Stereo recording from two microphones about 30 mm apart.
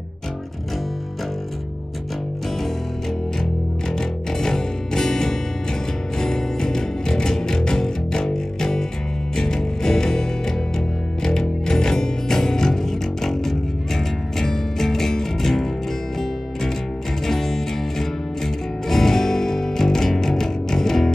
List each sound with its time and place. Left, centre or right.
3.9 s music: left
11.2 s music: left
17.3 s music: centre